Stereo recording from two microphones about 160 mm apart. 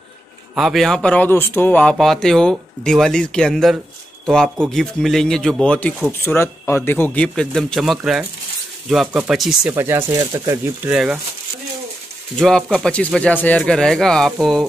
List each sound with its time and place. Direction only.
0.6 s speech: centre (ahead or behind)
9.8 s speech: 15° right (ahead or behind)
12.4 s speech: centre (ahead or behind)